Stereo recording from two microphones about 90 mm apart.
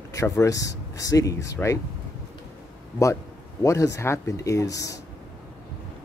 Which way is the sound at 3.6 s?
35° left (ahead or behind).